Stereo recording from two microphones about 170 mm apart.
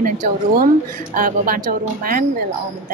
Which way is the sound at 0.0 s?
50° right (ahead or behind).